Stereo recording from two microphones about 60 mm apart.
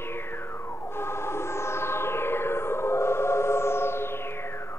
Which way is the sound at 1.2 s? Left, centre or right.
Left.